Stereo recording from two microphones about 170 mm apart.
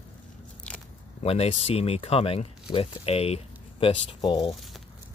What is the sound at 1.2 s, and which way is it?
Speech, 35° left (ahead or behind).